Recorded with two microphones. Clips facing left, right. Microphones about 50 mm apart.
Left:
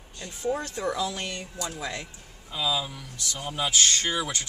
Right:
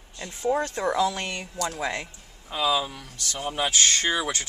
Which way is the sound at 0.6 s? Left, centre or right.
Right.